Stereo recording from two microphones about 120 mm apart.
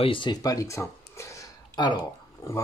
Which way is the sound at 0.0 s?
45° left (ahead or behind).